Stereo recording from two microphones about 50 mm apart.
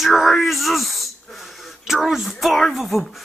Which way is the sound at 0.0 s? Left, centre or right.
Centre.